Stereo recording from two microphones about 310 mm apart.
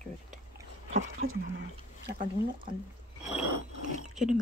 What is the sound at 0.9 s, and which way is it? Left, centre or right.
Speech, right.